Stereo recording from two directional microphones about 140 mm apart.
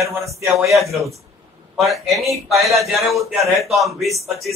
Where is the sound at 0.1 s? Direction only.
20° right (ahead or behind).